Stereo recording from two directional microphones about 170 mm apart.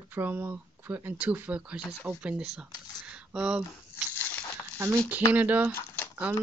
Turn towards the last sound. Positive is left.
turn(degrees=15)  # may be behind; listen again after turning